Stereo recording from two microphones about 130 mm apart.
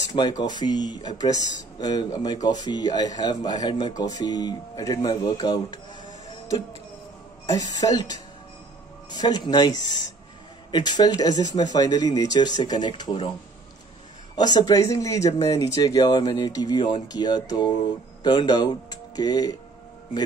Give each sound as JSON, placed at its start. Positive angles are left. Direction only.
{"t": 0.0, "sound": "speech", "side_deg": 30}
{"t": 7.5, "sound": "speech", "side_deg": 30}
{"t": 14.3, "sound": "speech", "side_deg": 30}